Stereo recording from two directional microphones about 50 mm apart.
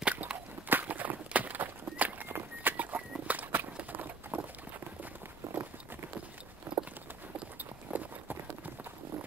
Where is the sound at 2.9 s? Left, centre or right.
Right.